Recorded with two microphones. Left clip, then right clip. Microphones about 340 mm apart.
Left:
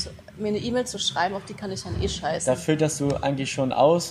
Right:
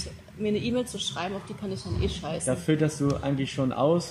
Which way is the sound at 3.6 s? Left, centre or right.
Left.